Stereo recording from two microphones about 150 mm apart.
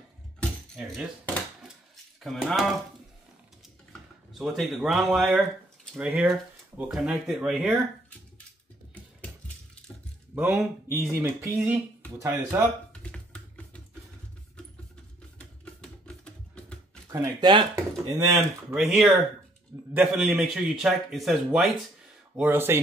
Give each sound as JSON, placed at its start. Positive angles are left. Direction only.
{"t": 0.4, "sound": "keys jangling", "side_deg": -5}
{"t": 2.2, "sound": "a man's voice", "side_deg": 0}
{"t": 4.3, "sound": "a man's voice", "side_deg": 0}
{"t": 10.3, "sound": "speech", "side_deg": -15}
{"t": 13.0, "sound": "a sound", "side_deg": 5}
{"t": 15.6, "sound": "music", "side_deg": 5}
{"t": 17.1, "sound": "speech", "side_deg": -25}
{"t": 18.3, "sound": "a man's voice", "side_deg": 0}
{"t": 22.4, "sound": "speech", "side_deg": -15}